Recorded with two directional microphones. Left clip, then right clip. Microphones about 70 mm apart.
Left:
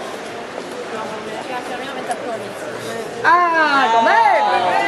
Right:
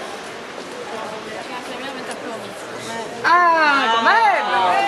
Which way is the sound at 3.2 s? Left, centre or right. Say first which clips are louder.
Even; right.